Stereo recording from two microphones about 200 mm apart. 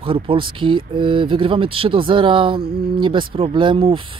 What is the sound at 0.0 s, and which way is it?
Speech, 25° right (ahead or behind).